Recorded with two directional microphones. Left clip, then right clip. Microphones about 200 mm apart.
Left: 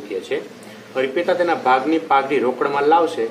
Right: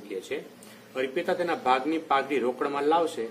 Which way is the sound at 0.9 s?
45° right (ahead or behind).